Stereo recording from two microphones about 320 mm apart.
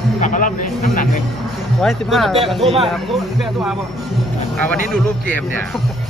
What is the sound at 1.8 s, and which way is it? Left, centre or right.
Speech, centre.